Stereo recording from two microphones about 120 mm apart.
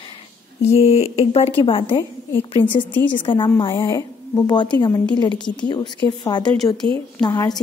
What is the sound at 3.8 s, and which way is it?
A woman's voice, 35° left (ahead or behind).